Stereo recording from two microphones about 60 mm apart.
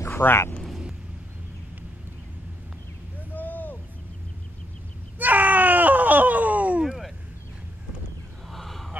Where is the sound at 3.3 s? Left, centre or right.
Left.